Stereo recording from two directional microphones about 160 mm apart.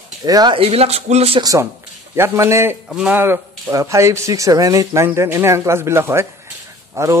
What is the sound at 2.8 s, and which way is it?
Speech, 5° right (ahead or behind).